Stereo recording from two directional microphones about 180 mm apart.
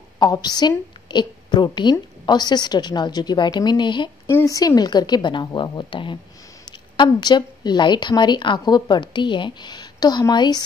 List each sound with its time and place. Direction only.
0.2 s a woman's voice: 25° left (ahead or behind)